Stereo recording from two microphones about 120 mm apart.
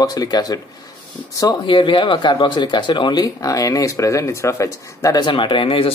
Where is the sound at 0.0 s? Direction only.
35° left (ahead or behind).